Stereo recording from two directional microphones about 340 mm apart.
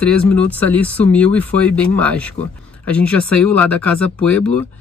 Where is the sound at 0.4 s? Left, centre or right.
Centre.